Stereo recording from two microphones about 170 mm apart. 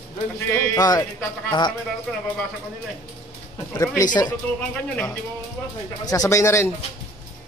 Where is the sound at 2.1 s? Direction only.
5° left (ahead or behind).